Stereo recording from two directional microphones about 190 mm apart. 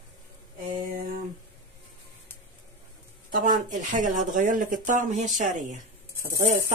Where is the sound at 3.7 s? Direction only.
40° right (ahead or behind).